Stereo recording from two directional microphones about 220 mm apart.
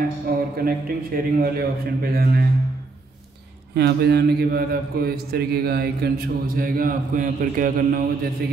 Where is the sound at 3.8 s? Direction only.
50° right (ahead or behind).